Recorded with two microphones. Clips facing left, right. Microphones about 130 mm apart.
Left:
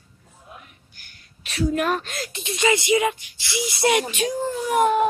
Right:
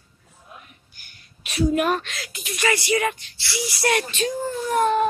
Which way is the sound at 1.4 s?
15° right (ahead or behind).